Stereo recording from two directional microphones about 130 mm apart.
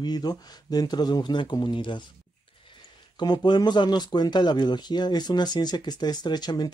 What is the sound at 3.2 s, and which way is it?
Speech, 35° left (ahead or behind).